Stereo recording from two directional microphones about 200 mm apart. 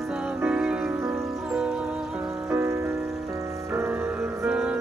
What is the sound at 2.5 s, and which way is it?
Music, 15° right (ahead or behind).